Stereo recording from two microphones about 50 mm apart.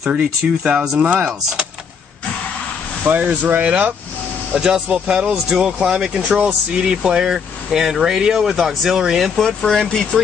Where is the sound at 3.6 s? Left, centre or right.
Right; by 9.3 s centre.